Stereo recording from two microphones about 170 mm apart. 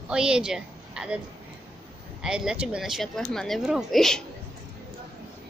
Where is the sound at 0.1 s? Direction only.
5° right (ahead or behind).